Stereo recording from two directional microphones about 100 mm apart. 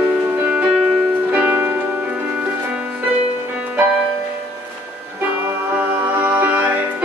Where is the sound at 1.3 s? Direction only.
15° right (ahead or behind).